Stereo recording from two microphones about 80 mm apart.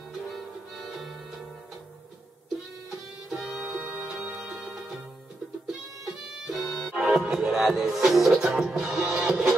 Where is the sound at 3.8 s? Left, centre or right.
Right.